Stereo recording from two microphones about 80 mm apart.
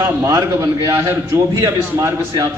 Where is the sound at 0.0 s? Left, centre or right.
Right.